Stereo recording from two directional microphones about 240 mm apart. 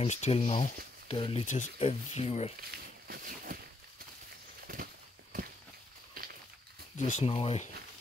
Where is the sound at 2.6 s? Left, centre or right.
Right.